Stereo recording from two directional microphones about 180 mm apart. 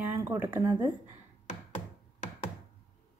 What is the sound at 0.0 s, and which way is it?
Speech, 10° right (ahead or behind).